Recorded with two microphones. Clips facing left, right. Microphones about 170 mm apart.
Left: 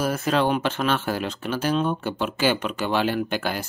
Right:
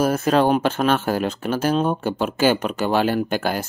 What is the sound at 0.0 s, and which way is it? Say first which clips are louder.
Speech: right 5 dB; 45° right (ahead or behind).